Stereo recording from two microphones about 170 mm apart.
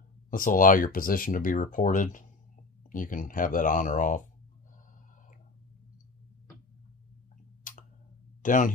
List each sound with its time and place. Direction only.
0.3 s speech: 55° left (ahead or behind)
8.4 s speech: 50° left (ahead or behind)